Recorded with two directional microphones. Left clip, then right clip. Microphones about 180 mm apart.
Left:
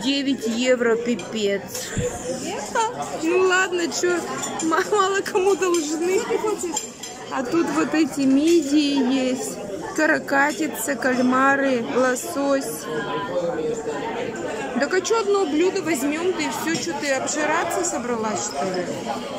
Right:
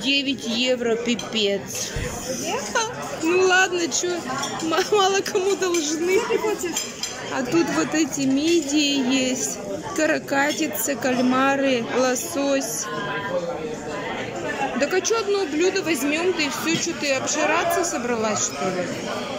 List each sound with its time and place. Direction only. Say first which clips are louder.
0.0 s speech: right 1 dB; centre (ahead or behind)
3.3 s speech: right 1 dB; 5° left (ahead or behind)
7.3 s speech: even; 10° left (ahead or behind)
14.8 s speech: left 2 dB; 5° left (ahead or behind)